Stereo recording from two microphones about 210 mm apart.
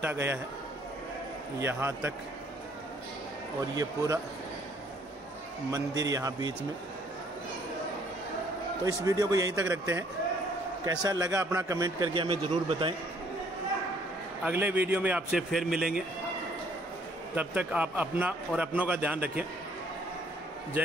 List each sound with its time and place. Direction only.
0.0 s a man's voice: 10° right (ahead or behind)
1.6 s a man's voice: 10° right (ahead or behind)
3.7 s a man's voice: 15° right (ahead or behind)
5.7 s a man's voice: 15° right (ahead or behind)
8.8 s a man's voice: 15° right (ahead or behind)
14.4 s a man's voice: 10° right (ahead or behind)
17.4 s a man's voice: 10° right (ahead or behind)